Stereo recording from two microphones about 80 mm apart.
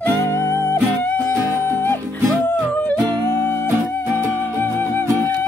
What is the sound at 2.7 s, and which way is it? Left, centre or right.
Music, centre.